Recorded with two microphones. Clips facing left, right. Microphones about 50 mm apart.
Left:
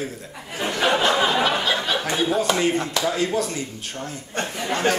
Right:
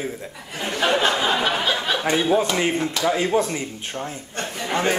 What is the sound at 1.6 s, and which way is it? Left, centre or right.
Speech, centre.